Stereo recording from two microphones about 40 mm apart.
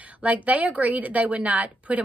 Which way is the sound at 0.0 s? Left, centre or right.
Right.